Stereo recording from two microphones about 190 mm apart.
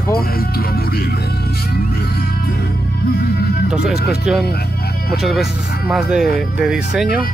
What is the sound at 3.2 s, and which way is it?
Music, 55° left (ahead or behind).